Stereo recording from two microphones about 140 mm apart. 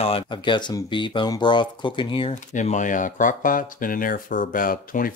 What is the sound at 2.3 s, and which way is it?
Speech, 60° left (ahead or behind).